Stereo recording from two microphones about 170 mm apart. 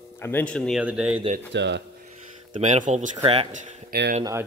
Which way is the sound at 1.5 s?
90° right.